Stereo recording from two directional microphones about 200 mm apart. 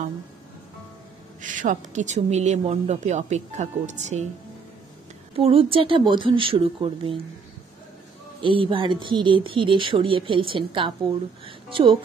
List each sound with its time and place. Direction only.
1.4 s speech: 40° right (ahead or behind)
5.3 s speech: 30° right (ahead or behind)
8.4 s speech: 25° right (ahead or behind)